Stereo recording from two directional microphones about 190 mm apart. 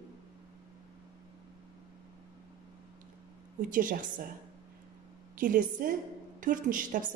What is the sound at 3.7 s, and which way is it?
Speech, 45° right (ahead or behind).